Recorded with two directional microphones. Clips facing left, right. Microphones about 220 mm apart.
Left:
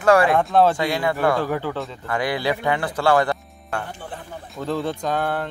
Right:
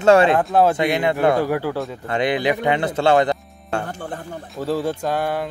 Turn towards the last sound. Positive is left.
turn(degrees=-10)  # may be behind; listen again after turning